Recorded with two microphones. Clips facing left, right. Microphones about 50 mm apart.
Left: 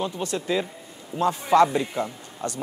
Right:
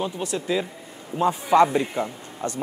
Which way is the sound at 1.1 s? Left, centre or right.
Centre.